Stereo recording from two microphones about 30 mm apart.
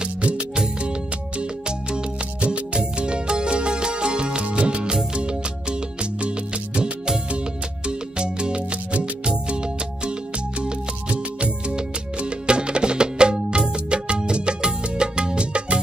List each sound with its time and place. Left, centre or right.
0.2 s music: right
1.4 s music: right